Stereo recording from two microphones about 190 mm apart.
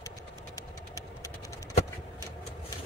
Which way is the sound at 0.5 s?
15° left (ahead or behind).